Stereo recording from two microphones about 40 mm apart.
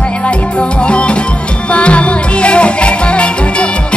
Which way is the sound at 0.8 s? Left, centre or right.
Left.